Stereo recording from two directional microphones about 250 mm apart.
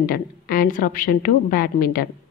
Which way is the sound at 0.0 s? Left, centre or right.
Left.